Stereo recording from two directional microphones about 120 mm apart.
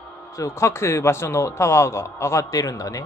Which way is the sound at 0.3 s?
25° left (ahead or behind).